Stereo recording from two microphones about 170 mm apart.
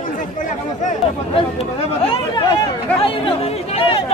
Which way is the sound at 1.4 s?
35° left (ahead or behind).